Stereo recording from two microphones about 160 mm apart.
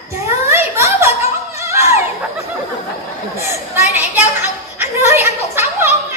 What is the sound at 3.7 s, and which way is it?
Children playing, 10° right (ahead or behind).